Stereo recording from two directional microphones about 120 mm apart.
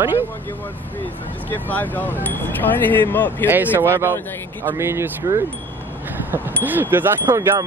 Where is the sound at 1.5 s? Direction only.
15° left (ahead or behind).